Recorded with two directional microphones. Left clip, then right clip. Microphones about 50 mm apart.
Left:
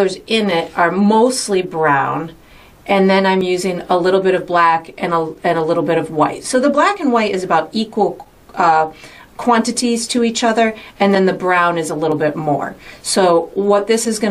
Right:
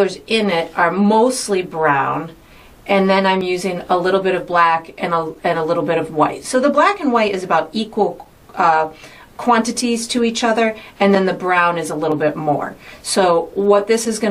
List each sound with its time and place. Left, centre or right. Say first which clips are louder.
0.0 s a woman's voice: left 1 dB; left